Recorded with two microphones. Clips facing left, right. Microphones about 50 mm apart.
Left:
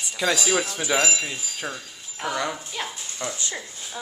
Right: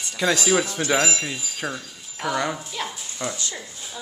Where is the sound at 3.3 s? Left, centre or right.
Centre.